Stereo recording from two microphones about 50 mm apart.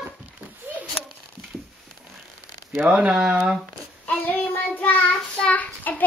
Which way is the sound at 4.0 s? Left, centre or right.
Left.